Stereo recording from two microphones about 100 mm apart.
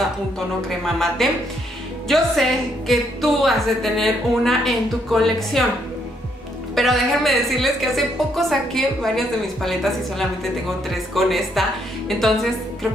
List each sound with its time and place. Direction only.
0.7 s a woman's voice: 5° left (ahead or behind)
6.7 s a woman's voice: centre (ahead or behind)